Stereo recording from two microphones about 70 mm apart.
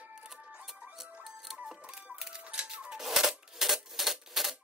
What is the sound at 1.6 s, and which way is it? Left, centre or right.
Music, centre.